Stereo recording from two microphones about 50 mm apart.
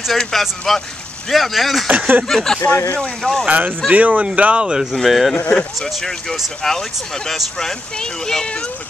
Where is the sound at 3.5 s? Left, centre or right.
Right.